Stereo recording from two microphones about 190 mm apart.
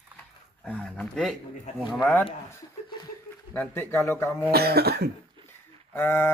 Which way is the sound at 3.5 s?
10° left (ahead or behind).